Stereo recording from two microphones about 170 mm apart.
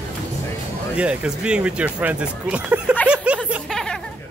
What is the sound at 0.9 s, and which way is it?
Speech, 5° right (ahead or behind).